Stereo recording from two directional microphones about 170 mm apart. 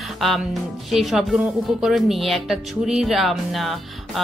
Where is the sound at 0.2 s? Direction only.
Centre (ahead or behind).